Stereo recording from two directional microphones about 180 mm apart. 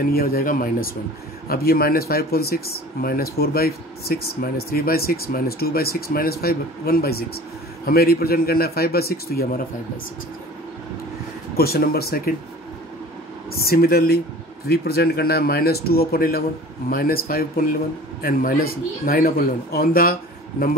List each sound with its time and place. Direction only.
0.0 s speech: 55° left (ahead or behind)
11.5 s speech: 60° left (ahead or behind)
13.5 s speech: 55° left (ahead or behind)